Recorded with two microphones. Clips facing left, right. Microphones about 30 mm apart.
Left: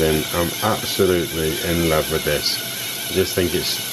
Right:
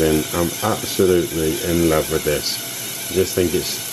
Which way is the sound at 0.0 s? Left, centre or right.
Centre.